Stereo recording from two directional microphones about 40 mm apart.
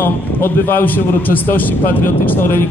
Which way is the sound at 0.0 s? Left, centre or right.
Left.